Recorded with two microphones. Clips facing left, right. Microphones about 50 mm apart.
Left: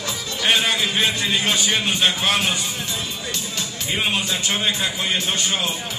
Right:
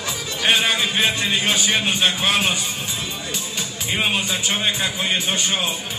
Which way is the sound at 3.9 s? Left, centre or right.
Centre.